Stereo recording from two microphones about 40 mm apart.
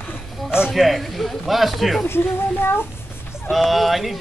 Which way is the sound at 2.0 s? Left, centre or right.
Left.